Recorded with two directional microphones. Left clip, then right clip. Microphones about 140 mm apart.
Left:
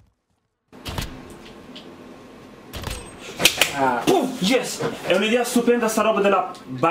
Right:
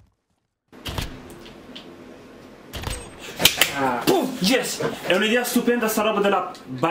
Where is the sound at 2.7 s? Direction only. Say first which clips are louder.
Even; centre (ahead or behind).